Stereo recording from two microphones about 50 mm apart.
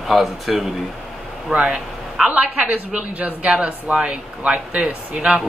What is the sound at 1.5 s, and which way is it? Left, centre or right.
Speech, right.